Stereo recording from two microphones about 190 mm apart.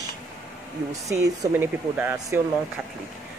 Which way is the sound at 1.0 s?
15° right (ahead or behind).